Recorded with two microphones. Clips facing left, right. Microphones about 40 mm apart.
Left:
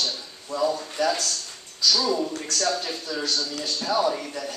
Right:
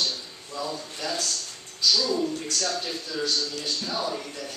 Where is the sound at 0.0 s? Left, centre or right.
Left.